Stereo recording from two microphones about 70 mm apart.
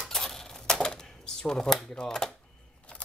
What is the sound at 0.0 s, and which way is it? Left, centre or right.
Typewriter, centre.